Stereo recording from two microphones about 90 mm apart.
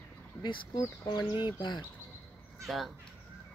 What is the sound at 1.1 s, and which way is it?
Speech, 55° left (ahead or behind).